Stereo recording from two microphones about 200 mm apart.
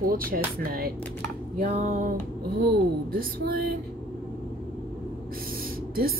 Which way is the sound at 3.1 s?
50° right (ahead or behind).